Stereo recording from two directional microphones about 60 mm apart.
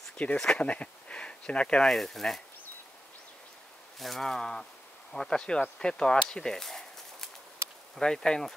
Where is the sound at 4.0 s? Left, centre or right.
Centre.